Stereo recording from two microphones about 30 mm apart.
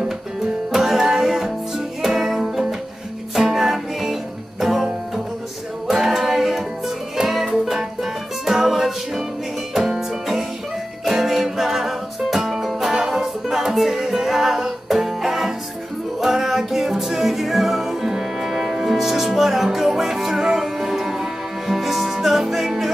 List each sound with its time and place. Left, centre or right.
0.7 s music: centre
5.9 s music: centre
7.6 s music: centre